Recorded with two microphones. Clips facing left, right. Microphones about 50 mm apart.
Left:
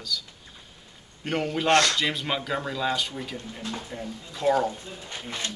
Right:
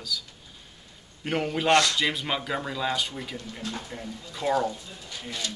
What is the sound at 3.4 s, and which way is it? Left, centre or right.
Speech, left.